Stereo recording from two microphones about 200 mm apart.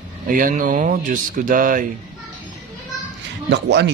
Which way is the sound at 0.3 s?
40° right (ahead or behind).